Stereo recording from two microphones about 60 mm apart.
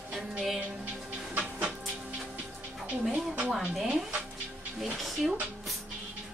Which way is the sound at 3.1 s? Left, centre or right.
Right.